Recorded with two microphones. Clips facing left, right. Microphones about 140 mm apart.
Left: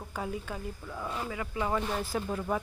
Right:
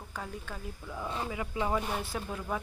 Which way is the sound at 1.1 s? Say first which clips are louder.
Right 1 dB; 20° right (ahead or behind).